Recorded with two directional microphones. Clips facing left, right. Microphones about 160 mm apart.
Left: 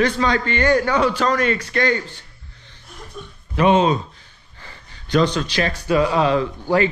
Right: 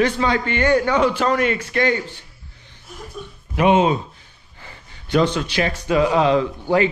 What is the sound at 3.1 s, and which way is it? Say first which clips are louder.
Speech: left 1 dB; 15° right (ahead or behind).